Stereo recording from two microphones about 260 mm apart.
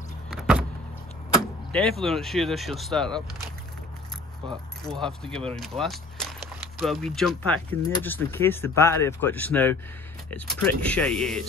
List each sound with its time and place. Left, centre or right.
0.3 s vehicle: centre
1.3 s speech: centre
4.4 s speech: centre
4.8 s speech: centre